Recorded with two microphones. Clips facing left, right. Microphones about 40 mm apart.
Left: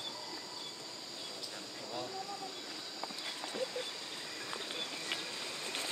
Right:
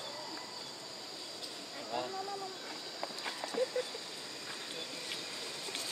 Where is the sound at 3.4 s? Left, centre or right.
Left.